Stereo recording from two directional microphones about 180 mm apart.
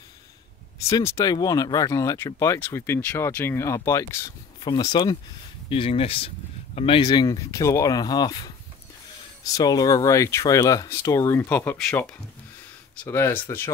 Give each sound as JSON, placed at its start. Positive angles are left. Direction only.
{"t": 0.9, "sound": "speech", "side_deg": 20}
{"t": 7.0, "sound": "speech", "side_deg": 20}